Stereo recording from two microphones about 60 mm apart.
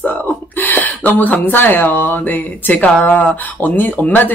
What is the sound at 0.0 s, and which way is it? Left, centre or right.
Speech, left.